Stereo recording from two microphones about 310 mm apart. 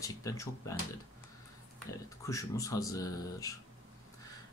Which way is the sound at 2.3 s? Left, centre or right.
Centre.